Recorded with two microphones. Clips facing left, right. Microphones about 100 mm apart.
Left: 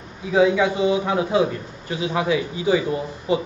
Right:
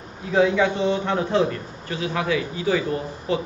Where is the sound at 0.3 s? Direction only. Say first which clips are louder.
Left 1 dB; 5° left (ahead or behind).